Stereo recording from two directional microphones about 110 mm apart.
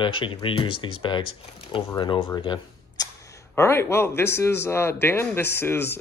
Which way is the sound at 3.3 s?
25° left (ahead or behind).